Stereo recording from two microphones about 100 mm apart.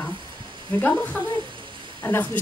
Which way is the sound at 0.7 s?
15° left (ahead or behind).